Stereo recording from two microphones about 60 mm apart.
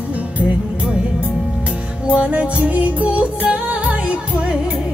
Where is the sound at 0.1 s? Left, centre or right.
Right.